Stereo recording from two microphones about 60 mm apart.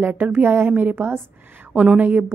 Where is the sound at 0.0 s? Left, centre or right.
Right.